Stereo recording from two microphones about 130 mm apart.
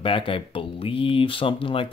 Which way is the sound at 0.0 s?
45° left (ahead or behind).